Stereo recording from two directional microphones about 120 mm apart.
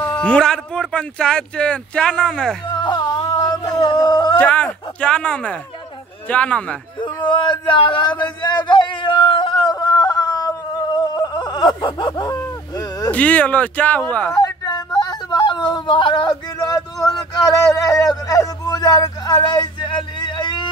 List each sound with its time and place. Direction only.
0.2 s speech: 5° left (ahead or behind)
2.7 s music: 35° left (ahead or behind)
4.4 s speech: 10° left (ahead or behind)
7.0 s a sound: 40° left (ahead or behind)
13.1 s speech: 10° left (ahead or behind)
14.3 s a sound: 35° left (ahead or behind)